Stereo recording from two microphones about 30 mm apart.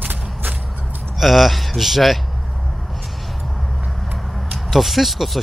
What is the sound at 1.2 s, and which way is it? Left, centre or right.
Speech, centre.